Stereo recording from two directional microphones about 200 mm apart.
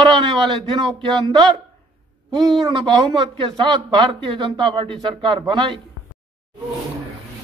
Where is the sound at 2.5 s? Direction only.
25° right (ahead or behind).